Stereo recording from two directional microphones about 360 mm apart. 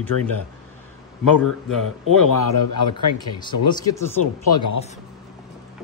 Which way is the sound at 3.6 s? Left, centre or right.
Centre.